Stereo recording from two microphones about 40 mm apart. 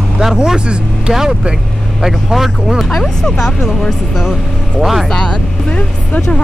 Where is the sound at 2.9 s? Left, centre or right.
Centre.